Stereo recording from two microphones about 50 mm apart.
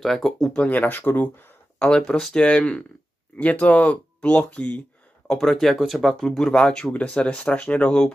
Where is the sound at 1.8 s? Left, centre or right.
Left.